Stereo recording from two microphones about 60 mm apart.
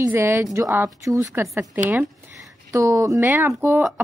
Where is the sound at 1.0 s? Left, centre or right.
Right.